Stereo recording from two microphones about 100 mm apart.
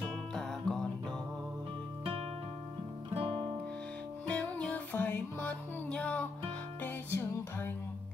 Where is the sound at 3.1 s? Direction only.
70° right (ahead or behind).